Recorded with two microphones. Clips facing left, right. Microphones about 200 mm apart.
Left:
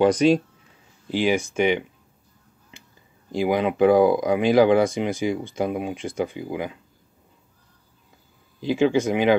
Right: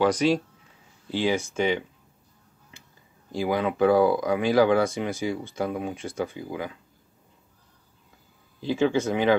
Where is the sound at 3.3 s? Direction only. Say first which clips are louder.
Left 4 dB; 20° left (ahead or behind).